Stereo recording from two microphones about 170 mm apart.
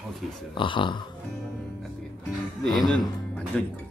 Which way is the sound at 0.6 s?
30° left (ahead or behind).